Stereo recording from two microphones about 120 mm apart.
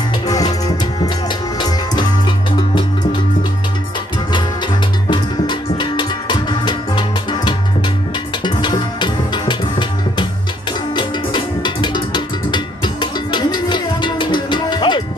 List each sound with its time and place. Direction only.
0.3 s music: 30° left (ahead or behind)
5.1 s music: 40° left (ahead or behind)